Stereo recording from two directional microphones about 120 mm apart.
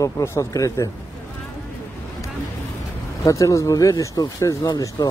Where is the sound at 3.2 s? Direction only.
25° left (ahead or behind).